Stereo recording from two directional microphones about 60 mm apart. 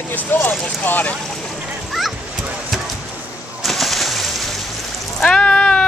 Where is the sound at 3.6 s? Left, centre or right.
Centre.